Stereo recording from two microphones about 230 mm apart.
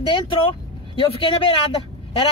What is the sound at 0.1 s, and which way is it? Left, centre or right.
Speech, left.